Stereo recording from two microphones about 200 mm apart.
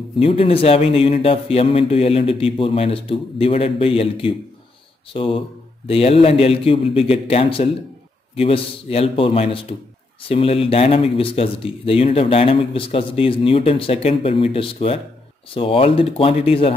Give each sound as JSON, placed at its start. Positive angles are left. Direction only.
{"t": 0.2, "sound": "speech", "side_deg": 30}